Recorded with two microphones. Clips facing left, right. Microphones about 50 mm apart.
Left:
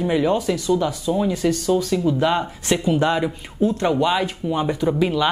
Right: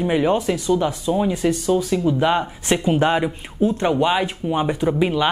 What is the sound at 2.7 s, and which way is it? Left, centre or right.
Speech, right.